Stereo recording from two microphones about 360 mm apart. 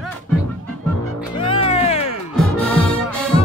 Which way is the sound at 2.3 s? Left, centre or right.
Centre.